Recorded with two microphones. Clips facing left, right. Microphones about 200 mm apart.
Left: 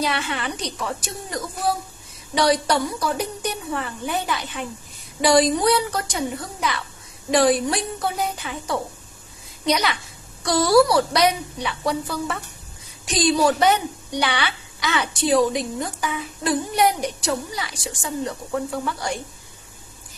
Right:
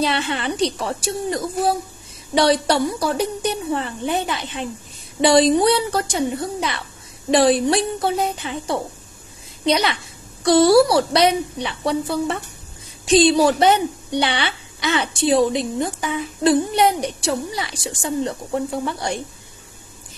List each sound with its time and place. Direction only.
0.0 s a woman's voice: 30° right (ahead or behind)